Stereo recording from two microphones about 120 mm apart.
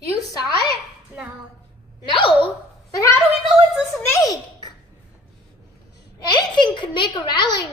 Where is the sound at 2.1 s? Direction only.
45° left (ahead or behind).